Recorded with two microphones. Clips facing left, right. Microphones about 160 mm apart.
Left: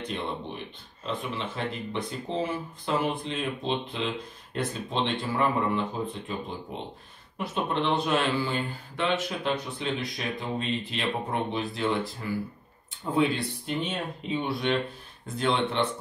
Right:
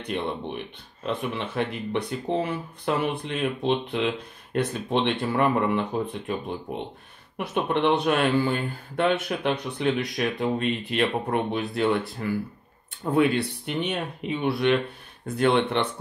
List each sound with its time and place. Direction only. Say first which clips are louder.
1.0 s a man's voice: right 4 dB; 65° right (ahead or behind)
7.3 s a man's voice: right 3 dB; 65° right (ahead or behind)